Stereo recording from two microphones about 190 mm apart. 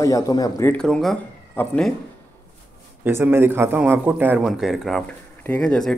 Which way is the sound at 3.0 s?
10° right (ahead or behind).